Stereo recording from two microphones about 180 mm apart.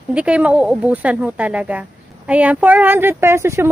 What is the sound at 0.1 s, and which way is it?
Speech, 5° right (ahead or behind).